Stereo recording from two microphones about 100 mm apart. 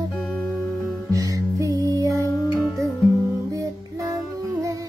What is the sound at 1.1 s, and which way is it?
Music, 35° right (ahead or behind).